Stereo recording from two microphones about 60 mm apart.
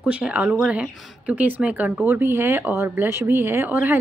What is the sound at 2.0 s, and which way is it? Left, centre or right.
A woman's voice, right.